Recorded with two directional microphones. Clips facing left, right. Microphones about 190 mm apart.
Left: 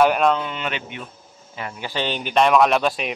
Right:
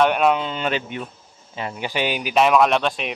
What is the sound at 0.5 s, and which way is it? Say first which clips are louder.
Speech: right 4 dB; 35° right (ahead or behind).